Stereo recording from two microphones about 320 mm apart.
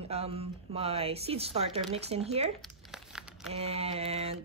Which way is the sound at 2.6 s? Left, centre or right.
Centre.